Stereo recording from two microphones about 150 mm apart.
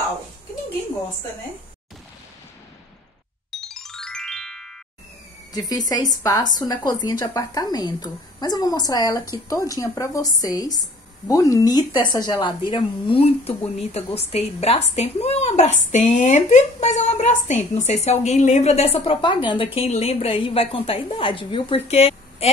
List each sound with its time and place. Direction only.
3.6 s music: 5° left (ahead or behind)
5.5 s a woman's voice: 25° left (ahead or behind); by 22.5 s 45° left (ahead or behind)